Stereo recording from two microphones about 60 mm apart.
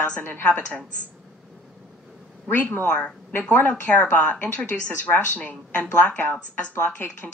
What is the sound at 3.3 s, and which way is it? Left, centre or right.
A woman's voice, left.